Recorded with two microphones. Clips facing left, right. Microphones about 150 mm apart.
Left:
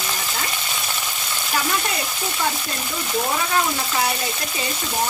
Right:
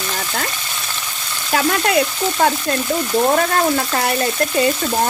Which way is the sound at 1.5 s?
70° right (ahead or behind).